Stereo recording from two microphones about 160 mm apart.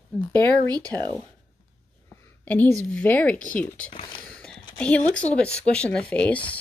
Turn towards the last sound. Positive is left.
turn(degrees=10)  # may be behind; listen again after turning